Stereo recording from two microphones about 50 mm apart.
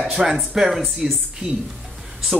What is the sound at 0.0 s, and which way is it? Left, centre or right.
Speech, centre.